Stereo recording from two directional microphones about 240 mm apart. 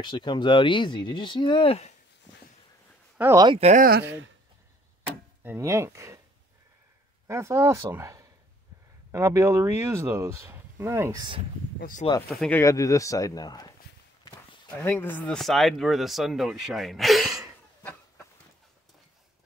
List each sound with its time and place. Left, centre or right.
0.0 s speech: centre
3.2 s speech: centre
3.5 s speech: right
5.4 s speech: centre
7.2 s speech: centre
11.8 s speech: left
12.3 s speech: centre
14.8 s speech: centre